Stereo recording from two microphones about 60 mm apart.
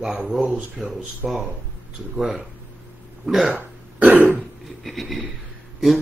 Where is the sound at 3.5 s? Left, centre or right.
Right.